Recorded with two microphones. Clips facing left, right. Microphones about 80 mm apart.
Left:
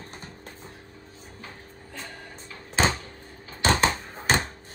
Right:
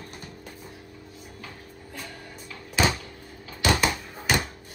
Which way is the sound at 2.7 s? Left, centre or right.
Left.